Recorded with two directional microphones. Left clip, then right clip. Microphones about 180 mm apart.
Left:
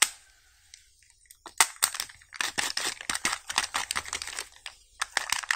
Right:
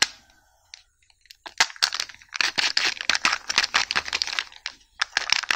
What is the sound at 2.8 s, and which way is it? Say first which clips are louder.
Camera: right 9 dB; 20° right (ahead or behind).